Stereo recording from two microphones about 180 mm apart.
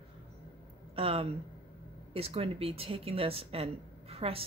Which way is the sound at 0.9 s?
35° right (ahead or behind).